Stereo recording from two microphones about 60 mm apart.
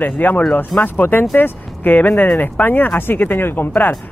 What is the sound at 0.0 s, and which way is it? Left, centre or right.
Speech, left.